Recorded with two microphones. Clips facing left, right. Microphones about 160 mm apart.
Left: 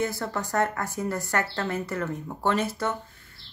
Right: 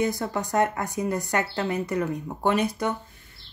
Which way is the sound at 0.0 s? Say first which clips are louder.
Right 3 dB; 15° right (ahead or behind).